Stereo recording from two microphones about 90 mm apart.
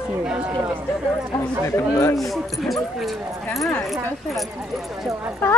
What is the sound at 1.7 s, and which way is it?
Speech, 30° left (ahead or behind).